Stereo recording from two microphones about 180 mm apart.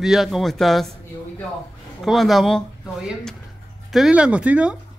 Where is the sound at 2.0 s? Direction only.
Centre (ahead or behind).